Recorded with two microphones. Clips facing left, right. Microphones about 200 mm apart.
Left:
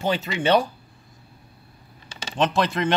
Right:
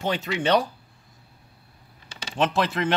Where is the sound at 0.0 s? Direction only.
5° left (ahead or behind).